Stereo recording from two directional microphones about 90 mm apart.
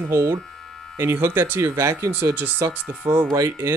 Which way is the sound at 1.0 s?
25° right (ahead or behind).